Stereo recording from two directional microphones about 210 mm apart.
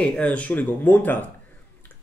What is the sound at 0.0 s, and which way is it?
Speech, 5° left (ahead or behind).